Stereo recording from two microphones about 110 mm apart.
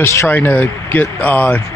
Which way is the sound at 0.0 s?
20° left (ahead or behind).